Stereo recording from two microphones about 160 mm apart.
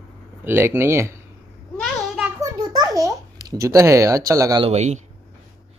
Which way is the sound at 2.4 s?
20° right (ahead or behind).